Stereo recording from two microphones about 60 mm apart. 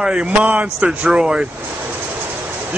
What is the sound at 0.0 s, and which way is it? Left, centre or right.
A man's voice, centre.